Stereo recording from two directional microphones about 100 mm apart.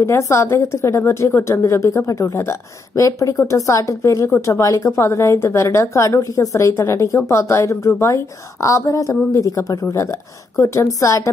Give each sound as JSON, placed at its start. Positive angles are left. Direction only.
{"t": 0.0, "sound": "a woman's voice", "side_deg": 30}